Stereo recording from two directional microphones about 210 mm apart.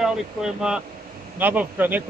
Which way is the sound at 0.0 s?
5° right (ahead or behind).